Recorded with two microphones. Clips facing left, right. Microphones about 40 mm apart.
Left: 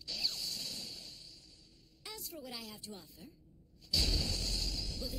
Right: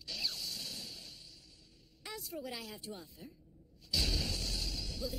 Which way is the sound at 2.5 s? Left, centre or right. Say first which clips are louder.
Right 3 dB; centre.